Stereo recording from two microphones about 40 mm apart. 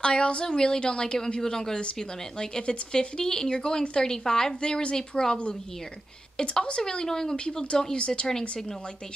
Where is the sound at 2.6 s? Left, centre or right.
Left; by 7.3 s centre.